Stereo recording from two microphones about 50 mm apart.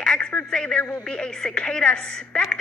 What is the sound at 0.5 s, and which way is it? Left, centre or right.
Speech, centre.